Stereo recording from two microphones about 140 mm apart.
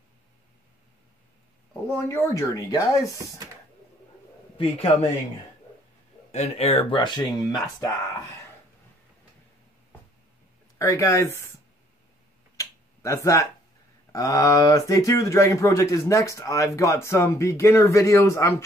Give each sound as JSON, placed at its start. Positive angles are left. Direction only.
{"t": 1.7, "sound": "speech", "side_deg": 20}
{"t": 4.6, "sound": "a man's voice", "side_deg": 50}
{"t": 6.3, "sound": "speech", "side_deg": 45}
{"t": 10.8, "sound": "speech", "side_deg": 20}
{"t": 12.5, "sound": "a sound", "side_deg": 20}
{"t": 14.1, "sound": "speech", "side_deg": 25}